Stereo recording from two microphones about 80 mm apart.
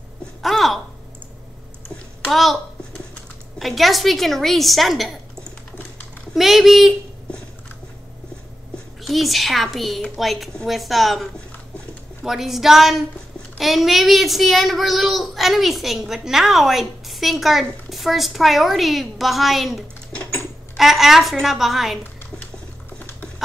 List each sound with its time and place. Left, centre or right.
0.4 s a sound: centre
2.2 s a sound: centre
3.5 s a child's voice: centre
6.3 s a child's voice: centre
9.0 s a child's voice: centre
20.1 s sewing machine: centre
20.7 s a child's voice: centre